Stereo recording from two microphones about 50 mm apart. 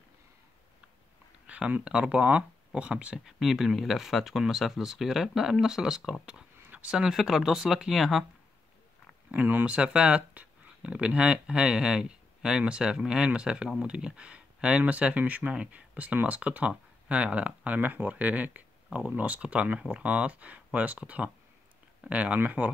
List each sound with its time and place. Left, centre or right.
1.5 s speech: right
3.3 s speech: centre
9.3 s speech: right
9.7 s speech: right
22.4 s speech: right